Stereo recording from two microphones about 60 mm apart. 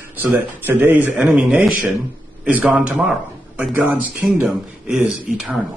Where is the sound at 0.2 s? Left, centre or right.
Right.